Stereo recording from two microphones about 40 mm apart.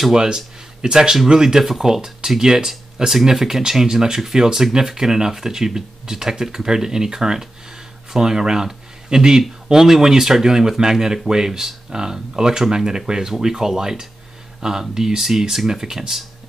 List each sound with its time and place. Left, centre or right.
0.1 s speech: centre